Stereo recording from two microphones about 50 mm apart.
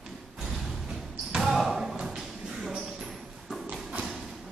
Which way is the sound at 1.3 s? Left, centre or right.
Centre.